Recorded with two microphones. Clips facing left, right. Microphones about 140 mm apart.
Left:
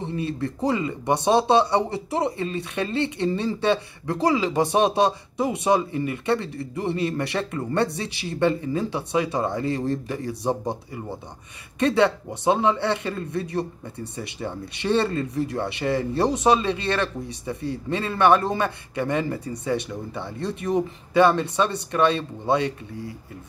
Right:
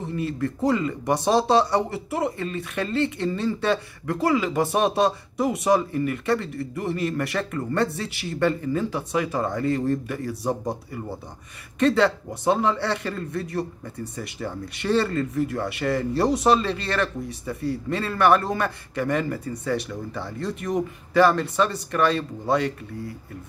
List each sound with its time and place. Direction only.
0.0 s a man's voice: 25° left (ahead or behind)
11.8 s speech: 25° left (ahead or behind)